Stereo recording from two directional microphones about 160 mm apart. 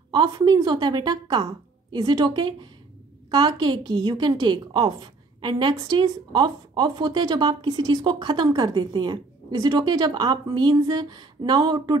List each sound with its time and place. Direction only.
0.1 s a woman's voice: 30° right (ahead or behind)